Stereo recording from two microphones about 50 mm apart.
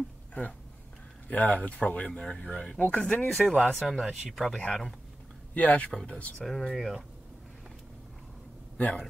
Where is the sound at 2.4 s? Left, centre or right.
Left.